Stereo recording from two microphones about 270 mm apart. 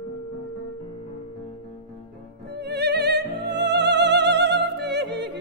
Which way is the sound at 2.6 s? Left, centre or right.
Right.